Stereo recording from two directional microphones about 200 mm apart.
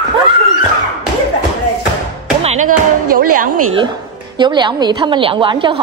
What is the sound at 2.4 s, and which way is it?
Music, 40° right (ahead or behind).